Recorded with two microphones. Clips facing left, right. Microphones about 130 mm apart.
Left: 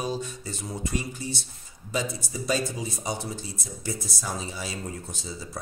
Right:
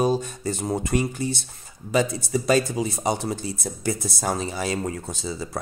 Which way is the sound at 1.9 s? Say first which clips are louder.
Right 8 dB; 70° right (ahead or behind).